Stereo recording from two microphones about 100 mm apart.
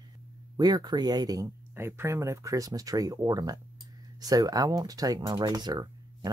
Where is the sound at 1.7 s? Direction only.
20° right (ahead or behind).